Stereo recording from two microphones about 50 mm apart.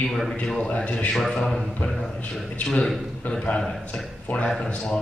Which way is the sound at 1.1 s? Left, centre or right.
Centre.